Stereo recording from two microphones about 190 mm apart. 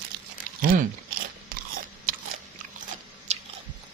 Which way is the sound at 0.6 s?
50° right (ahead or behind).